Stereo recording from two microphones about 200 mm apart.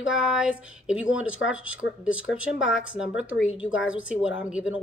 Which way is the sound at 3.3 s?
75° left (ahead or behind).